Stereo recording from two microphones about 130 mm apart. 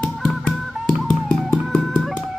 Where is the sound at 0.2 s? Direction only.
Centre (ahead or behind).